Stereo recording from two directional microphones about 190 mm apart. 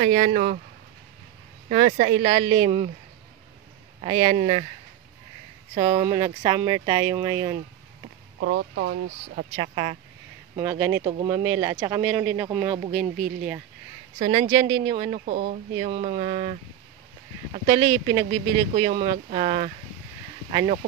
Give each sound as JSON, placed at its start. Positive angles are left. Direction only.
{"t": 0.0, "sound": "speech", "side_deg": -35}
{"t": 1.7, "sound": "speech", "side_deg": -40}
{"t": 4.0, "sound": "speech", "side_deg": -30}
{"t": 5.8, "sound": "speech", "side_deg": -30}
{"t": 8.4, "sound": "speech", "side_deg": -70}
{"t": 9.6, "sound": "speech", "side_deg": -30}
{"t": 10.5, "sound": "speech", "side_deg": -15}
{"t": 14.2, "sound": "speech", "side_deg": -30}
{"t": 15.0, "sound": "speech", "side_deg": -40}
{"t": 17.6, "sound": "speech", "side_deg": -25}
{"t": 19.0, "sound": "speech", "side_deg": -40}